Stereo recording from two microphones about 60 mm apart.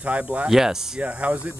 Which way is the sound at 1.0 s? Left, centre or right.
Right.